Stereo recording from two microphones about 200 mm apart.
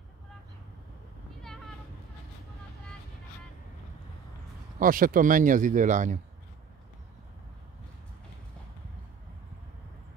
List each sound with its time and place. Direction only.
4.7 s speech: 45° right (ahead or behind)